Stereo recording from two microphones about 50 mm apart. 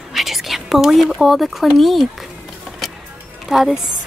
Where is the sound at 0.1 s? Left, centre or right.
Centre.